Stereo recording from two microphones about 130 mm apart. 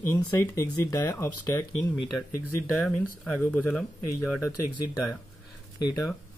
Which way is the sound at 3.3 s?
15° left (ahead or behind).